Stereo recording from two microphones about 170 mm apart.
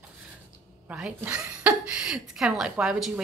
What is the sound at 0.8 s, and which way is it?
Speech, 5° right (ahead or behind).